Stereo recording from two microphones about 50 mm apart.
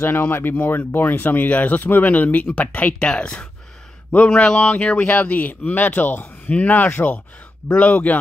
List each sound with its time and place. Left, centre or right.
0.1 s a man's voice: left
3.0 s a man's voice: centre